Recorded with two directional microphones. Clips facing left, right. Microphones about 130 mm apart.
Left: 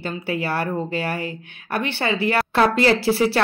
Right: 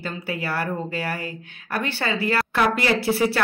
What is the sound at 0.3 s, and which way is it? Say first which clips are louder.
Speech: left 3 dB; 25° left (ahead or behind).